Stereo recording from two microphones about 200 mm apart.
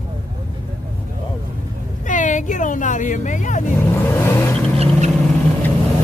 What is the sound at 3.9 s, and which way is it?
Vehicle, 10° left (ahead or behind).